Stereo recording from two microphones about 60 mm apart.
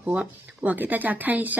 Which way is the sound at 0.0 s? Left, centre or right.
Right.